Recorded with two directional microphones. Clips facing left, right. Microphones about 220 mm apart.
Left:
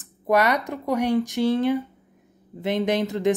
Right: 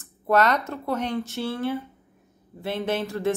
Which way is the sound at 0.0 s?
15° left (ahead or behind).